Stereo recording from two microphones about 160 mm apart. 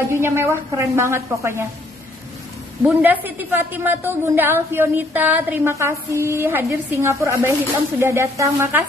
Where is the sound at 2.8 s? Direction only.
10° right (ahead or behind).